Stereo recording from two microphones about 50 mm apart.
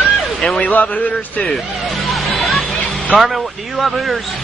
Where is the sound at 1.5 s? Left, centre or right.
Centre.